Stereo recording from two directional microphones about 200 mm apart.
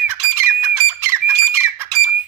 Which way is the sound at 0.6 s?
10° right (ahead or behind).